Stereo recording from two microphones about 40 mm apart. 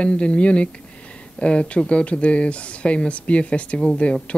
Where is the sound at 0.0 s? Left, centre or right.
Left.